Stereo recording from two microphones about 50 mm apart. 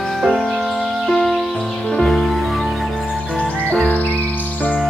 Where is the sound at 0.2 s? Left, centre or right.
Centre.